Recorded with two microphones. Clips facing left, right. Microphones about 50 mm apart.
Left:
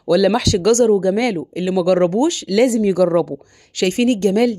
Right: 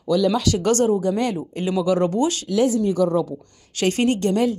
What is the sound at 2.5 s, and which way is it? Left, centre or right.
Speech, left.